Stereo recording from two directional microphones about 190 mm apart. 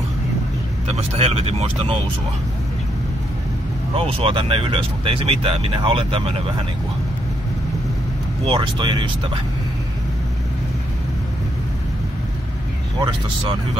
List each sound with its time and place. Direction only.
0.8 s speech: 35° right (ahead or behind)
3.9 s speech: 30° right (ahead or behind)
8.5 s speech: 25° right (ahead or behind)